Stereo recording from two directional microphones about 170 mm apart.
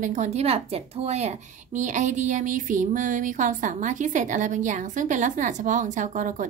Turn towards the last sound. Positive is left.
turn(degrees=-50)  # may be behind; listen again after turning